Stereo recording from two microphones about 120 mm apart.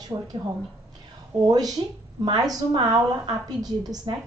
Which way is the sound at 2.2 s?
35° right (ahead or behind).